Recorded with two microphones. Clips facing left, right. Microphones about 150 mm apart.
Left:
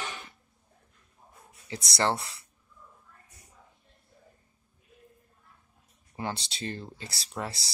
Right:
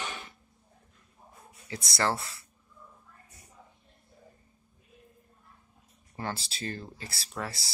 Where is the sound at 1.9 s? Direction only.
25° left (ahead or behind).